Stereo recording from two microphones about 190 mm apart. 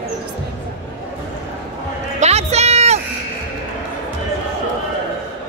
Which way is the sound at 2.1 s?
35° right (ahead or behind).